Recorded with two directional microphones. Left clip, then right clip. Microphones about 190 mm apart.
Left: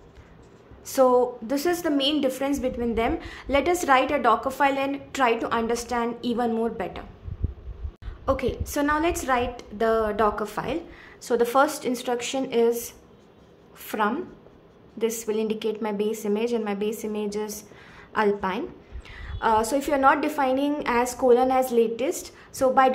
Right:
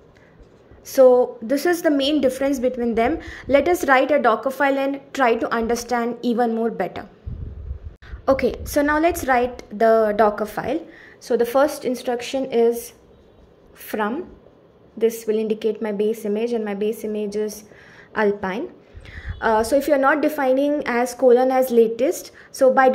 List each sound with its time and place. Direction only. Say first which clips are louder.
0.9 s a woman's voice: right 6 dB; 15° right (ahead or behind)
8.3 s a woman's voice: right 6 dB; 25° right (ahead or behind)